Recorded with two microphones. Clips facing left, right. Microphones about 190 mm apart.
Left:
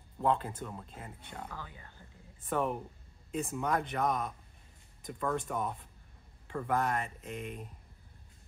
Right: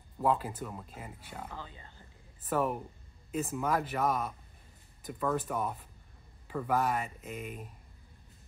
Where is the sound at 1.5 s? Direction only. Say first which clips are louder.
Right 1 dB; 20° right (ahead or behind).